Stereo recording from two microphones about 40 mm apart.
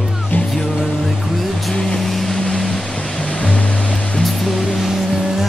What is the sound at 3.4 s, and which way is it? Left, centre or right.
Music, left.